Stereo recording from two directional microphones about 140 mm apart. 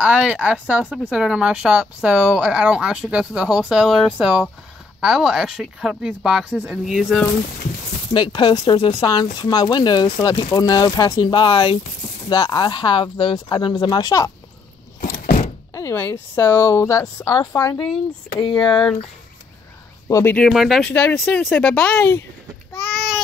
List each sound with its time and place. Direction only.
0.0 s speech: 10° right (ahead or behind)
8.1 s speech: 30° left (ahead or behind)
15.0 s door: 65° left (ahead or behind)
15.7 s speech: 20° left (ahead or behind)
18.7 s speech: 5° left (ahead or behind)
20.1 s speech: 20° left (ahead or behind)
20.3 s speech: centre (ahead or behind)
22.7 s a sound: 5° left (ahead or behind)